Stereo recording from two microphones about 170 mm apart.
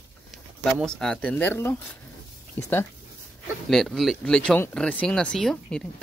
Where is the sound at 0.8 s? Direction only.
5° left (ahead or behind).